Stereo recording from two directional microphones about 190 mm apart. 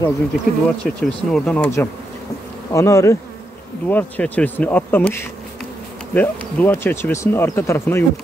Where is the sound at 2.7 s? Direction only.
15° left (ahead or behind).